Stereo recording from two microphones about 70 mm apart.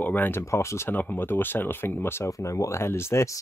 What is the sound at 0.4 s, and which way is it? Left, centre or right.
Speech, left.